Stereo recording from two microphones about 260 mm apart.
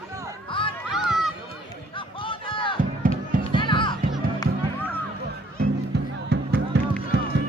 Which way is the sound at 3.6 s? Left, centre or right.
Centre.